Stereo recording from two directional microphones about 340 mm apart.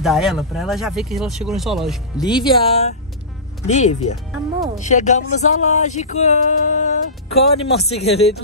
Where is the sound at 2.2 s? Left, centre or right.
Centre.